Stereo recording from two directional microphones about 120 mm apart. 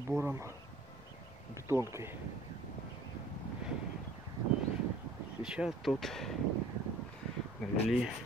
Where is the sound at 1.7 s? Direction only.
25° right (ahead or behind).